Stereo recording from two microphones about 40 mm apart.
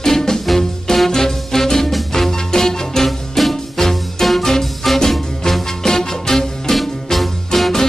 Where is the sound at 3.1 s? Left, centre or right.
Centre.